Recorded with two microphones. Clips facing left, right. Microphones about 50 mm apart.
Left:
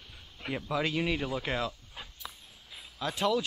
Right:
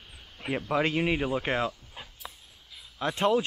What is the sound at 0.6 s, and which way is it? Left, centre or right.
Speech, right.